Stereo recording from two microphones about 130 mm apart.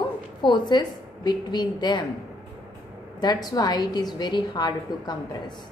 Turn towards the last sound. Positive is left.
turn(degrees=30)  # may be behind; listen again after turning